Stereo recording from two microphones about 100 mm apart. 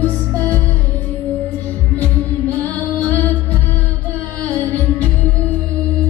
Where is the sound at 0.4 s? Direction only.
15° left (ahead or behind).